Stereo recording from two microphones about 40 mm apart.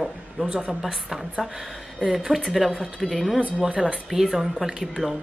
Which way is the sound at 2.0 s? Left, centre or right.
Centre.